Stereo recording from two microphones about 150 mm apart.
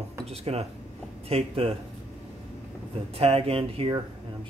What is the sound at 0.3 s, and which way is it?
Speech, 45° right (ahead or behind).